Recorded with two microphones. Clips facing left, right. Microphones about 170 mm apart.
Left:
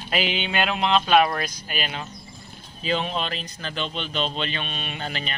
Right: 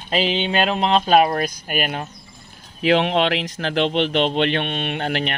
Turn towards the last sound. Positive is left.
turn(degrees=-65)  # may be behind; listen again after turning